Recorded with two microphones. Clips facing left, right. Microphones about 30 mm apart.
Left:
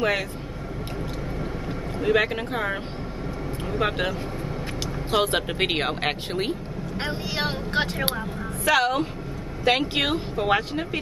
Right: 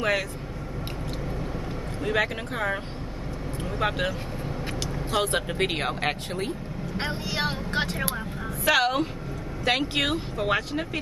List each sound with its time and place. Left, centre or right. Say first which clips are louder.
2.0 s speech: left 4 dB; centre
5.1 s speech: left 3 dB; centre
7.0 s speech: left 1 dB; centre
8.6 s speech: left 1 dB; centre
9.7 s speech: left 3 dB; centre